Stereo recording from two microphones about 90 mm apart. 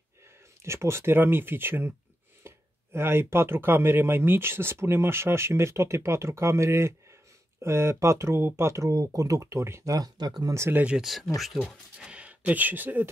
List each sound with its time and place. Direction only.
0.7 s speech: 30° right (ahead or behind); by 10.5 s 50° right (ahead or behind)
10.7 s speech: 15° right (ahead or behind)
11.0 s speech: centre (ahead or behind); by 13.1 s 20° right (ahead or behind)